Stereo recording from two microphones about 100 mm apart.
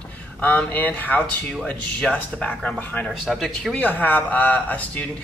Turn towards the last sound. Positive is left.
turn(degrees=15)  # may be behind; listen again after turning